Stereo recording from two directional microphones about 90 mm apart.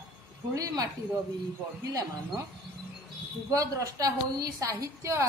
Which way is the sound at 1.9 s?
40° right (ahead or behind).